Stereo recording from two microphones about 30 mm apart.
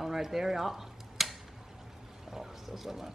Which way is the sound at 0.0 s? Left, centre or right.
Centre.